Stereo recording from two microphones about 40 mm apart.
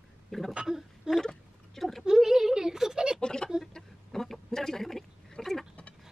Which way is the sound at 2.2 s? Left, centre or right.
Centre.